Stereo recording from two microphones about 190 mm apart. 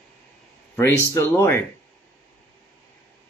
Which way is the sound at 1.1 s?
10° left (ahead or behind).